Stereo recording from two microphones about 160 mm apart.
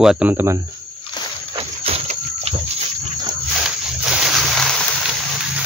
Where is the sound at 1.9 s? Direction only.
40° right (ahead or behind).